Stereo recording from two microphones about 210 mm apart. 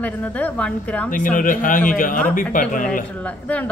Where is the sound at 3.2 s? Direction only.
5° left (ahead or behind).